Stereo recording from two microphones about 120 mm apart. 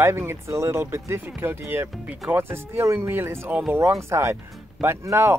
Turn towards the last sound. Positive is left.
turn(degrees=-20)  # may be behind; listen again after turning